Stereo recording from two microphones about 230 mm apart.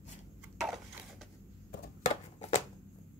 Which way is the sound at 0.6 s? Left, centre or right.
Centre.